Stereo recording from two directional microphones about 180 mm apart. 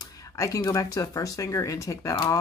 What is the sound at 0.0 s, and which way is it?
Speech, 20° left (ahead or behind).